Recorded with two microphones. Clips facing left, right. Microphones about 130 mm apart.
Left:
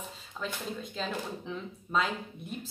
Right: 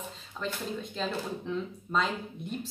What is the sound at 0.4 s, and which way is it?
Speech, 5° left (ahead or behind).